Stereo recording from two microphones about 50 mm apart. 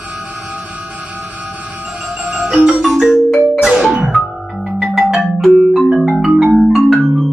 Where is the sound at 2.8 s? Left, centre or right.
Centre.